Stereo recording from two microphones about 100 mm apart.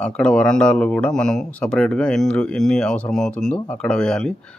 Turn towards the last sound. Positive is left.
turn(degrees=10)  # may be behind; listen again after turning